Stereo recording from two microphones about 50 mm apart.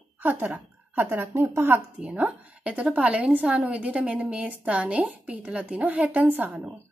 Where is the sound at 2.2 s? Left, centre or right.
Right.